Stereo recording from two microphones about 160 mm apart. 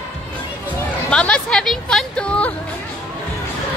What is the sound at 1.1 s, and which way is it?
Music, 5° left (ahead or behind).